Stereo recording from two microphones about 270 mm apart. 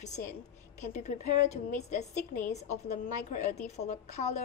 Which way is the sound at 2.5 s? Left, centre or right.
Left.